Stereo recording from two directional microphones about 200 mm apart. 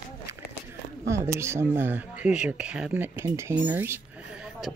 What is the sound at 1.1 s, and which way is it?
Speech, 15° right (ahead or behind).